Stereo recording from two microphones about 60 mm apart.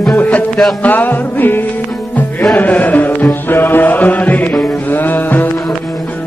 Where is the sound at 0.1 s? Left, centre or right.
Left.